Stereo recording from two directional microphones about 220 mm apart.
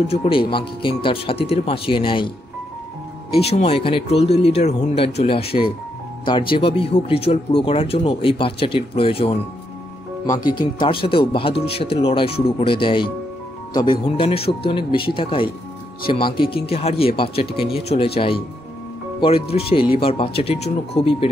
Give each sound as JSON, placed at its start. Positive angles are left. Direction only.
{"t": 0.1, "sound": "speech", "side_deg": 30}
{"t": 3.3, "sound": "speech", "side_deg": 25}